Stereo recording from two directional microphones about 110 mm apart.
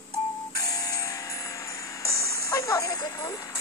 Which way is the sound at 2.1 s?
30° left (ahead or behind).